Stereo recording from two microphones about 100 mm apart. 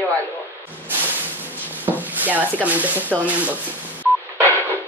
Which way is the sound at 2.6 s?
15° right (ahead or behind).